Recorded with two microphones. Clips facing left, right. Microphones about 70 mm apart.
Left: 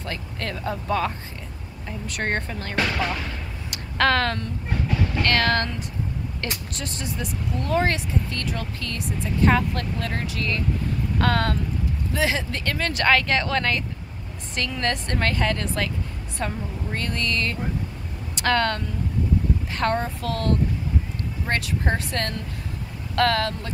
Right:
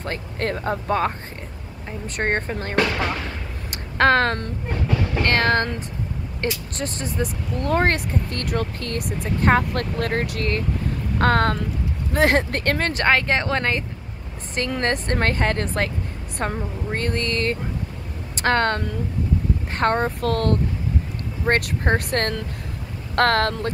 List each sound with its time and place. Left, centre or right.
0.0 s speech: right
3.7 s a sound: right
5.2 s speech: right
6.8 s speech: right
12.1 s speech: right